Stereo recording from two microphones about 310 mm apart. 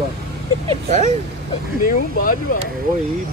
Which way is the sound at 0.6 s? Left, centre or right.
Right.